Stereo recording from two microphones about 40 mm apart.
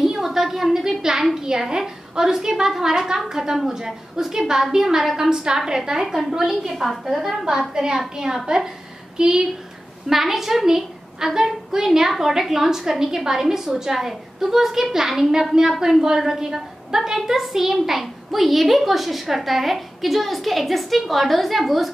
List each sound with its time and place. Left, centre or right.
0.0 s a sound: centre
3.3 s a woman's voice: centre
10.0 s a woman's voice: centre